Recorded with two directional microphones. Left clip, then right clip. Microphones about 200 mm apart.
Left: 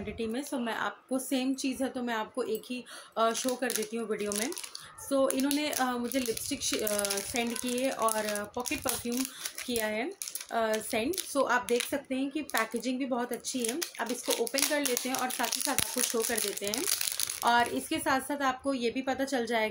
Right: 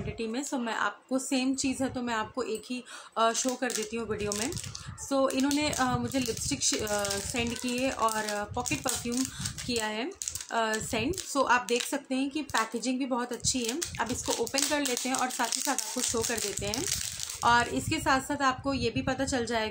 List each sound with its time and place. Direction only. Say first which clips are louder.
0.5 s a woman's voice: right 5 dB; 10° right (ahead or behind)